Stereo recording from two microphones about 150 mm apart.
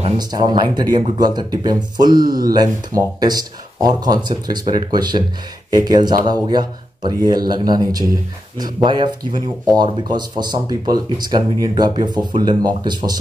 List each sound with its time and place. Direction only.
0.2 s speech: 30° right (ahead or behind)